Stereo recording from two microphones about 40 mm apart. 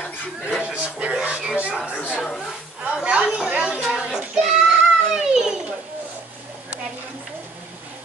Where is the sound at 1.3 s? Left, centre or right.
Centre.